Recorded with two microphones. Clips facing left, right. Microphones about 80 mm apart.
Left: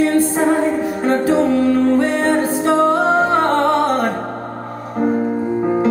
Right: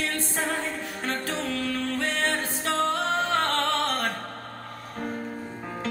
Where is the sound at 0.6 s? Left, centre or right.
Left.